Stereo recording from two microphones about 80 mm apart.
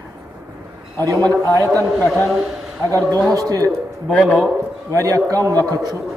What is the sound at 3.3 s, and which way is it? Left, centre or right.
Speech, right.